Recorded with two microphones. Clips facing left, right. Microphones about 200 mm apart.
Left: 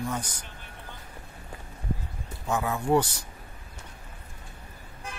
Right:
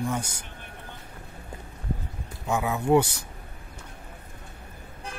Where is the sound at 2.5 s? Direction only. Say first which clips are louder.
Right 2 dB; 10° right (ahead or behind).